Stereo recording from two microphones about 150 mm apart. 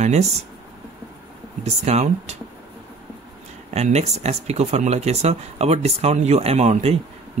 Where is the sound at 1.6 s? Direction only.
45° right (ahead or behind).